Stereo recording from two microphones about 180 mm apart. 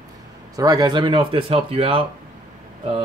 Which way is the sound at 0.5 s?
20° right (ahead or behind).